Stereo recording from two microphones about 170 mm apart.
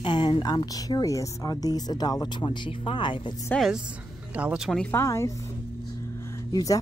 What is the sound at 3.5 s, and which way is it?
Speech, centre (ahead or behind).